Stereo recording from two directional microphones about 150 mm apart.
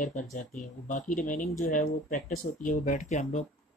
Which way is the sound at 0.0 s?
55° left (ahead or behind).